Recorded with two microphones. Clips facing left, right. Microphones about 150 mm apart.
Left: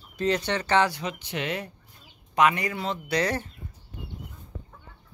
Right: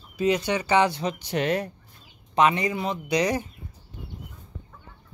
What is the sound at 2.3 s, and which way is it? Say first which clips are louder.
Speech: right 2 dB; 25° right (ahead or behind).